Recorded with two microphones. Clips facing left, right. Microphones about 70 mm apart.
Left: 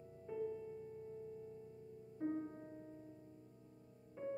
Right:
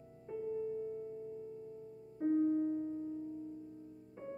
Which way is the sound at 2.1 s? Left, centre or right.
Centre.